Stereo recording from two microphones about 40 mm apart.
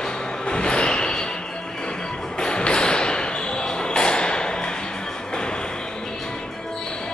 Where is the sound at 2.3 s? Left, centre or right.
Left.